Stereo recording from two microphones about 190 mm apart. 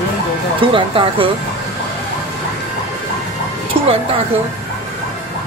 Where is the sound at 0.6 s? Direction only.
25° right (ahead or behind).